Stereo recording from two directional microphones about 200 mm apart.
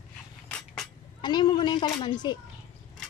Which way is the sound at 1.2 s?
20° left (ahead or behind).